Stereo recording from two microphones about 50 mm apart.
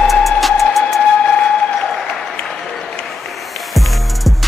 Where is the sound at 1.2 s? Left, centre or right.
Left.